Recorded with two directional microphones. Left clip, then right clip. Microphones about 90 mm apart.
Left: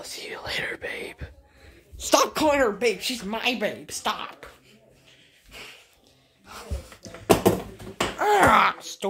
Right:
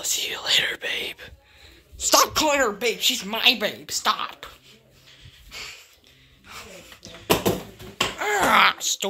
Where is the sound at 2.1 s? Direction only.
90° left.